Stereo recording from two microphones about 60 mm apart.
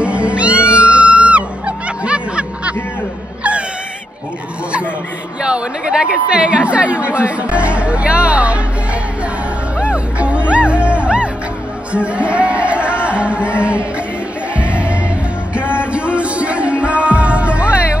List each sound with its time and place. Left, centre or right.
0.0 s music: centre
5.4 s chatter: centre
9.8 s music: centre